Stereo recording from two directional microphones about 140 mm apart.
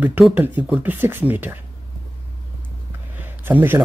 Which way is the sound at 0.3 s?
15° right (ahead or behind).